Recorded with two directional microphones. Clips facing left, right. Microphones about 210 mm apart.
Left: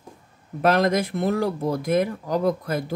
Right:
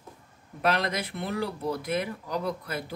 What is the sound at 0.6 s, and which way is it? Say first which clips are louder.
Speech: left 8 dB; 45° left (ahead or behind).